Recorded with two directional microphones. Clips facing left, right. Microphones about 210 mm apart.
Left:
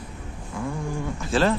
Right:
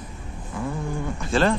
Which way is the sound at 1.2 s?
Centre (ahead or behind).